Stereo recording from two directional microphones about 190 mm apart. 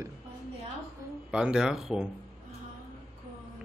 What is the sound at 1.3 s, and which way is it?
Speech, 5° right (ahead or behind).